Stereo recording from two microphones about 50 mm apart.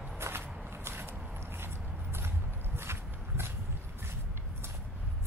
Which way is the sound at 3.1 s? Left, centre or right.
Right.